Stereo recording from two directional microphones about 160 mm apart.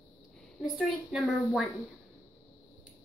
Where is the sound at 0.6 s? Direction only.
Centre (ahead or behind).